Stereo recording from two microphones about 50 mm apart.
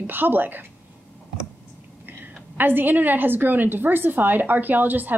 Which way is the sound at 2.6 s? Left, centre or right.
Right.